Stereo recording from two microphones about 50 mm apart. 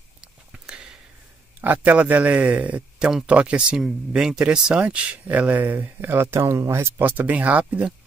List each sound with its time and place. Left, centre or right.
0.2 s a sound: centre
1.6 s speech: right; by 4.7 s centre
4.7 s speech: right
6.4 s speech: right
7.0 s speech: right